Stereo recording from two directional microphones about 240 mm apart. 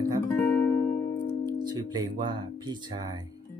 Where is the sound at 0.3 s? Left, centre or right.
Centre.